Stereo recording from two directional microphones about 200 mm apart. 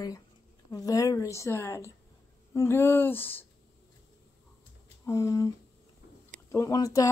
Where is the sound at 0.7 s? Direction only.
20° left (ahead or behind).